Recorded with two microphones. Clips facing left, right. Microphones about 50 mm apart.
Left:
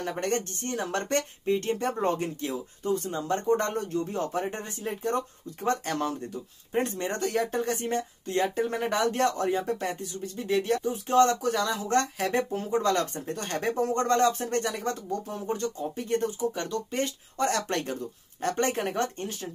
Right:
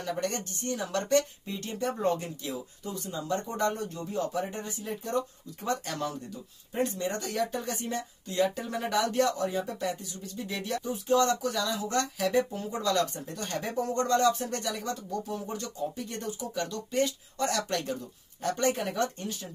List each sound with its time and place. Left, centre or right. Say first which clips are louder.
0.0 s speech: left 3 dB; left